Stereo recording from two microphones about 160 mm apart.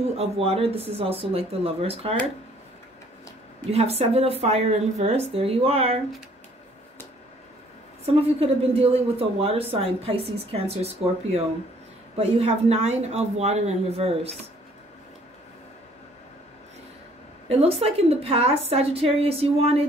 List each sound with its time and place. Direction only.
0.0 s a woman's voice: 40° right (ahead or behind)
3.7 s a woman's voice: 40° right (ahead or behind)
8.0 s a woman's voice: 40° right (ahead or behind)
12.2 s a woman's voice: 40° right (ahead or behind)
17.5 s a woman's voice: 40° right (ahead or behind)